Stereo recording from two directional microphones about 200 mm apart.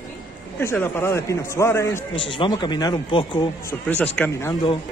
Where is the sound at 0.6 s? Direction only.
10° left (ahead or behind).